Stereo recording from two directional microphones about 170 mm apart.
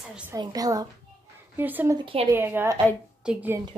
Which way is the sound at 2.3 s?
10° right (ahead or behind).